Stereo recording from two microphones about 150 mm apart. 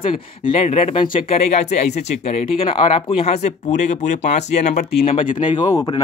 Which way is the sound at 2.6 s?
35° left (ahead or behind).